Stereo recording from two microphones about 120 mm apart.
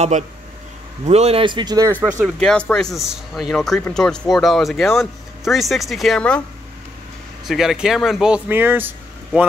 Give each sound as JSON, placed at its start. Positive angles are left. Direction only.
{"t": 1.0, "sound": "a man's voice", "side_deg": -60}
{"t": 1.4, "sound": "speech", "side_deg": -40}
{"t": 1.9, "sound": "speech", "side_deg": -15}
{"t": 2.2, "sound": "speech", "side_deg": 5}
{"t": 7.4, "sound": "speech", "side_deg": -5}
{"t": 8.5, "sound": "speech", "side_deg": -15}